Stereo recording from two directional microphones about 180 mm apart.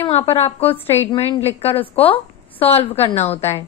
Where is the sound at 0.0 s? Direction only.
35° left (ahead or behind).